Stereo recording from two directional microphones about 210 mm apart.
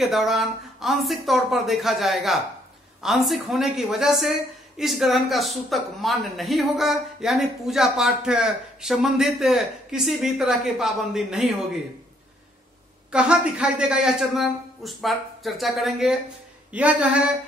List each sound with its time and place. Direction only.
0.0 s a woman's voice: centre (ahead or behind)
13.1 s a woman's voice: 5° right (ahead or behind)